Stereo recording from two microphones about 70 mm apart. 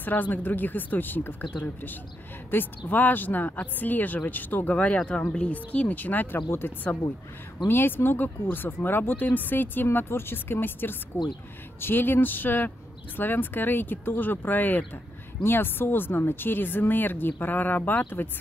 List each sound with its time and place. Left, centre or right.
0.0 s speech: left